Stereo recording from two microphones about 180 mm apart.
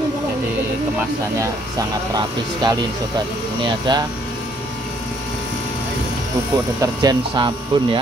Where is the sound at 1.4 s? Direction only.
20° right (ahead or behind).